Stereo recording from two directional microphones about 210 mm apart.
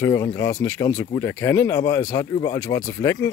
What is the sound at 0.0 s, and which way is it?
Speech, 15° left (ahead or behind).